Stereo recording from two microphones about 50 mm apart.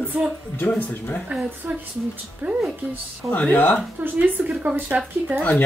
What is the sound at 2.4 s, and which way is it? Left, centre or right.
Speech, right.